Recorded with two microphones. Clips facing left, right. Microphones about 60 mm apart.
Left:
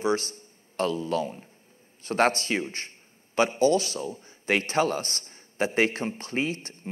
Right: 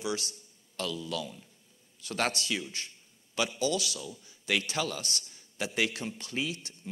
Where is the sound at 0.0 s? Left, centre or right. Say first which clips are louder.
Left 8 dB; left.